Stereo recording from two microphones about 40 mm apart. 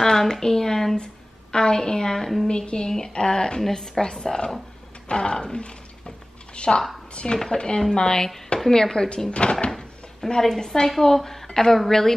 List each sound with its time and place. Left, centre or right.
0.0 s a woman's voice: centre
2.5 s a woman's voice: left
5.0 s a sound: left
7.5 s a woman's voice: left
9.3 s speech: left
9.7 s drawer open or close: centre
10.4 s a woman's voice: centre